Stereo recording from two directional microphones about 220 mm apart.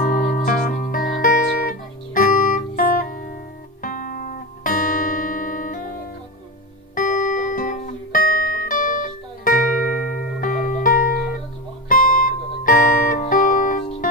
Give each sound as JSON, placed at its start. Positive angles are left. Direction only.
{"t": 0.0, "sound": "music", "side_deg": 35}
{"t": 7.0, "sound": "music", "side_deg": 35}